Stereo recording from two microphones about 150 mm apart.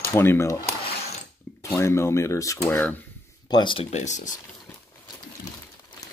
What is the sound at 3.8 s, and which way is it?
Speech, 50° left (ahead or behind).